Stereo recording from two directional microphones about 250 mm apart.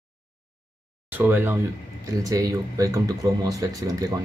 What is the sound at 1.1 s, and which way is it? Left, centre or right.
Speech, centre.